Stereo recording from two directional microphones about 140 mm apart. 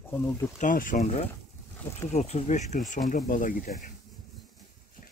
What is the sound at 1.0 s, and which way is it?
Speech, 45° left (ahead or behind).